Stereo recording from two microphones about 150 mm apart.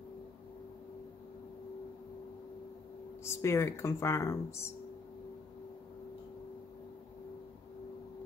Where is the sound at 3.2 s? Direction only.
20° left (ahead or behind).